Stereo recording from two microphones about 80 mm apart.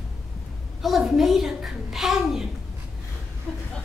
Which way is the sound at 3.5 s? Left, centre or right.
Centre.